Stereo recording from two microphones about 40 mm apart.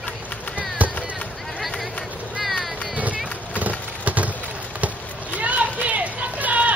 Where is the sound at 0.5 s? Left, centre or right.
Right.